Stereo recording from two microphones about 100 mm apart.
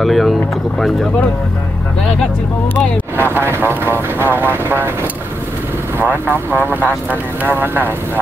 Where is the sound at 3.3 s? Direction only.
20° right (ahead or behind).